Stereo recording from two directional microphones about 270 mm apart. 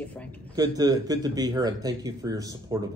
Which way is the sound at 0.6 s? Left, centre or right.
Centre.